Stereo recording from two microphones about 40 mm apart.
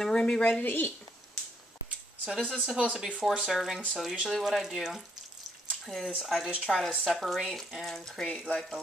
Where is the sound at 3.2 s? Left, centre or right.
Centre.